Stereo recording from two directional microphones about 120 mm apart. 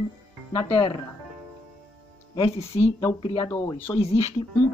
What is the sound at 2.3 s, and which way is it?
Speech, 50° left (ahead or behind).